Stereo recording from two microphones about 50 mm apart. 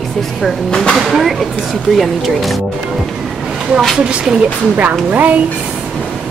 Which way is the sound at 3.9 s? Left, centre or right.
Centre.